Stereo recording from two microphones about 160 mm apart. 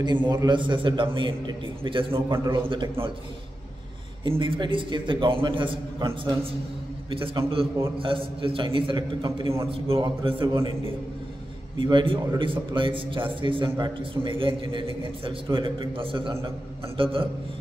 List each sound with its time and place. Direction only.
0.0 s a man's voice: 30° right (ahead or behind)
2.3 s a man's voice: 20° right (ahead or behind)
4.2 s a man's voice: 30° right (ahead or behind)
11.8 s a man's voice: 30° right (ahead or behind)